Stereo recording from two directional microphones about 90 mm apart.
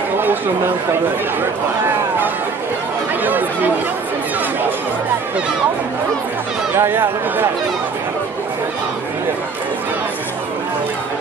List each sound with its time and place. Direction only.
3.3 s speech: 20° right (ahead or behind)
6.7 s speech: 25° right (ahead or behind)